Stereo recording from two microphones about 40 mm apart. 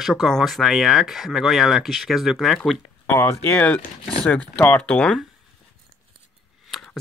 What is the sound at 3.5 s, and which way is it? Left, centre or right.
Speech, left.